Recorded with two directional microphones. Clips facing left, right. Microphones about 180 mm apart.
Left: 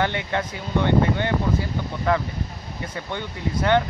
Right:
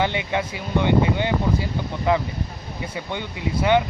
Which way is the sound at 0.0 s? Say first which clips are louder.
Right 1 dB; 15° right (ahead or behind).